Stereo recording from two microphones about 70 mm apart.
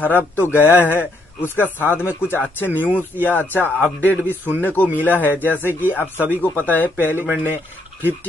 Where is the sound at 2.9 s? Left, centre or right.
Right.